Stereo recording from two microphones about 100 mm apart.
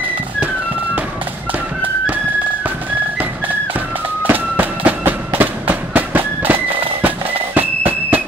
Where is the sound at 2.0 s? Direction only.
15° right (ahead or behind).